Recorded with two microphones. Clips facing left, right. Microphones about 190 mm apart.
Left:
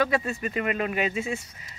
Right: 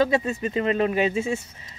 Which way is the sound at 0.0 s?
25° right (ahead or behind).